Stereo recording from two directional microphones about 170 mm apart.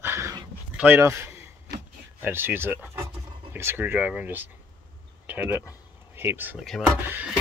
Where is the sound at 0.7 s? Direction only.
15° right (ahead or behind).